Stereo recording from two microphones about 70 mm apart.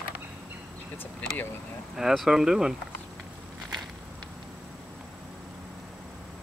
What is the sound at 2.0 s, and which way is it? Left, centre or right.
Speech, centre.